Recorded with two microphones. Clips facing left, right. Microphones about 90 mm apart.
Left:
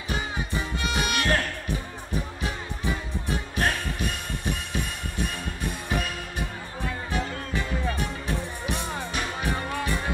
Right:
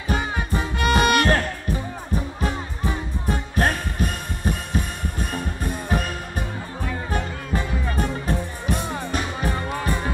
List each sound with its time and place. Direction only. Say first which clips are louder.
0.1 s music: right 5 dB; 60° right (ahead or behind)
1.7 s music: right 5 dB; 40° right (ahead or behind)